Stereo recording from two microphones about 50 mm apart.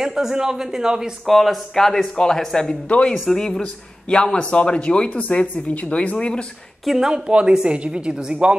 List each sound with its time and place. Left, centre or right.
0.0 s speech: centre
1.2 s speech: centre
2.9 s speech: left
6.9 s a woman's voice: centre